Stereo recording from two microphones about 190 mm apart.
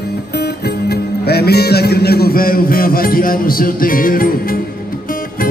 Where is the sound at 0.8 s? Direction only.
60° left (ahead or behind).